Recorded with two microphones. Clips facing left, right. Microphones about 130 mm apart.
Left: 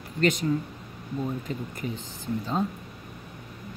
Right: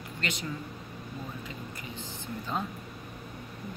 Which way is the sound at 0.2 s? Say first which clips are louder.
Left 12 dB; 45° left (ahead or behind).